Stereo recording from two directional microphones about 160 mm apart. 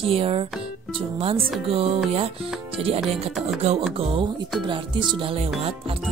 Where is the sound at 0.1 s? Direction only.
35° right (ahead or behind).